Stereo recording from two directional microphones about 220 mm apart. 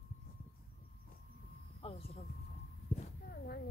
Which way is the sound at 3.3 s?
45° left (ahead or behind).